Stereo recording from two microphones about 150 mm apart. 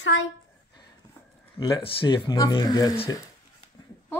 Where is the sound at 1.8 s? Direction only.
35° left (ahead or behind).